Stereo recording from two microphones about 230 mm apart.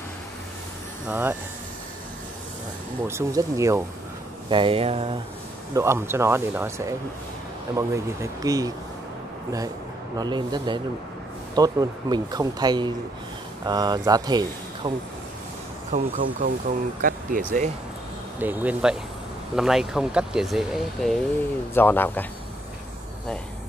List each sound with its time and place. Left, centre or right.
1.0 s speech: centre
3.1 s speech: centre
4.5 s a sound: right
5.8 s speech: centre
10.1 s speech: centre
15.9 s speech: right
18.4 s speech: centre